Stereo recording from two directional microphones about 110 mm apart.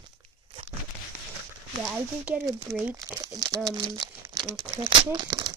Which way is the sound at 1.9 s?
10° right (ahead or behind).